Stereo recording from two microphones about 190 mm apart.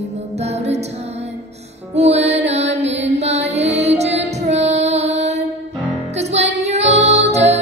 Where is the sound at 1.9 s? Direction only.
35° right (ahead or behind).